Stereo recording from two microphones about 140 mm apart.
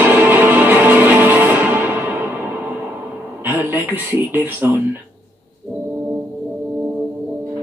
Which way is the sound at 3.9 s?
15° right (ahead or behind).